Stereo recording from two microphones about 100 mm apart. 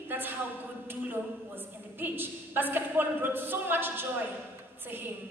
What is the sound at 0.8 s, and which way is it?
A woman's voice, 20° right (ahead or behind).